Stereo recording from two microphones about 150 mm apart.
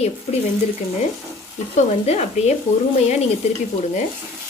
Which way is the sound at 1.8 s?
45° left (ahead or behind).